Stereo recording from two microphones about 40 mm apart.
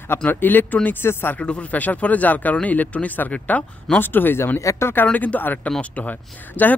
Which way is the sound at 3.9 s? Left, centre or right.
Left.